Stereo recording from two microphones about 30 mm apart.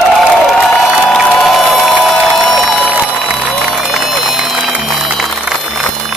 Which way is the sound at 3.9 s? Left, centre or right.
Centre.